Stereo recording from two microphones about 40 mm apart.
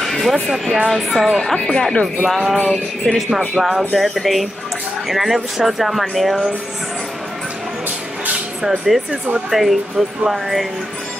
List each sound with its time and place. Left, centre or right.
0.1 s a sound: centre
0.8 s speech: centre
1.5 s speech: centre
2.2 s speech: centre
2.5 s music: centre
3.3 s speech: centre
8.6 s speech: centre